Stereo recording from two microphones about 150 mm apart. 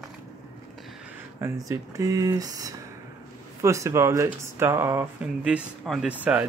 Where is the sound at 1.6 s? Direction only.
20° right (ahead or behind).